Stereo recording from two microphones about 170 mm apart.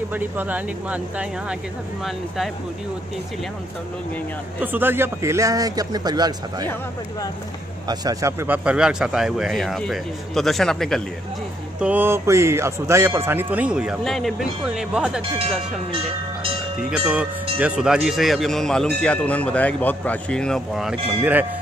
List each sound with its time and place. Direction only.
0.1 s speech: 10° right (ahead or behind)
4.6 s a man's voice: 10° right (ahead or behind)
7.9 s speech: 20° right (ahead or behind); by 11.0 s 5° left (ahead or behind)
11.8 s speech: 10° right (ahead or behind)
15.3 s speech: 35° right (ahead or behind)
16.9 s speech: 5° right (ahead or behind)